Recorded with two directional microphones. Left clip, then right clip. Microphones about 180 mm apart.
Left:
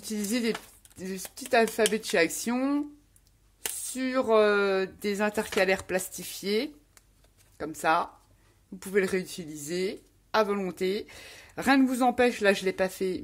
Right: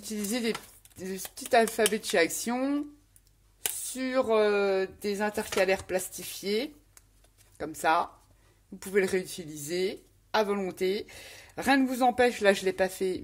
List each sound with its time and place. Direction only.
0.0 s speech: 15° left (ahead or behind)